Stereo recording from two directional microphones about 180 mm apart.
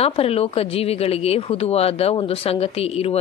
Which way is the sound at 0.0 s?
35° left (ahead or behind).